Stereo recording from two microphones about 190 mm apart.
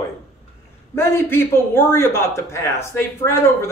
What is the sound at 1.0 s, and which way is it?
A man's voice, 10° left (ahead or behind).